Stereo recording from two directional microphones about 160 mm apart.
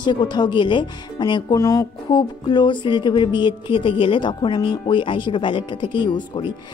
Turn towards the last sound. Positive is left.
turn(degrees=30)  # may be behind; listen again after turning